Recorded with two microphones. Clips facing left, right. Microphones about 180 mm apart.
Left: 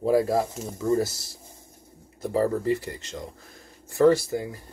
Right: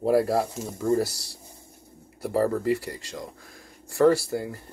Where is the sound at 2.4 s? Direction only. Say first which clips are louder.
Even; 20° left (ahead or behind).